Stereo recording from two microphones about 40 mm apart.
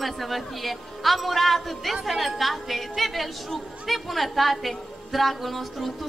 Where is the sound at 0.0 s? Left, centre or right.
Centre.